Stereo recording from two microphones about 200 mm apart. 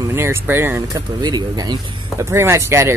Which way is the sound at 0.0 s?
15° right (ahead or behind).